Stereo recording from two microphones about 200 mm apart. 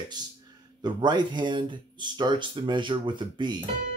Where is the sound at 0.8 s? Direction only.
20° right (ahead or behind).